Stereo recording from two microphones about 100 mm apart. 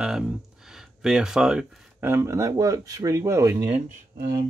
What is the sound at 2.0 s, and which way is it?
Speech, 30° right (ahead or behind).